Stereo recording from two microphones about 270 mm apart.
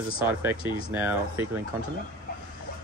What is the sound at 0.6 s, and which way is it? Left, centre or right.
Speech, centre.